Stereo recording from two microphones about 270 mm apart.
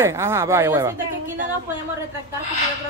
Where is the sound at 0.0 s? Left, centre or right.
Centre.